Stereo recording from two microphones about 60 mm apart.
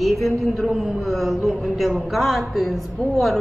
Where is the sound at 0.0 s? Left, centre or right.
Centre.